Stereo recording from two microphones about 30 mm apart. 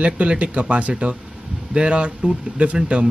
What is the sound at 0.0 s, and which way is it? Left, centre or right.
Speech, right.